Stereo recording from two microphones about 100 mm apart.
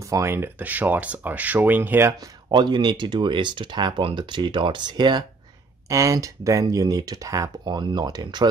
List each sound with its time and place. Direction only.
0.1 s speech: 25° right (ahead or behind)
2.5 s speech: 50° right (ahead or behind)
5.9 s speech: 30° right (ahead or behind)